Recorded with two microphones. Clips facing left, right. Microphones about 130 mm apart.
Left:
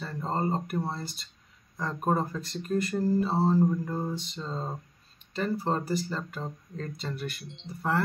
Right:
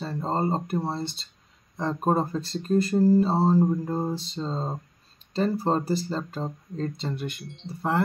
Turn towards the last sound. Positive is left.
turn(degrees=-25)  # may be behind; listen again after turning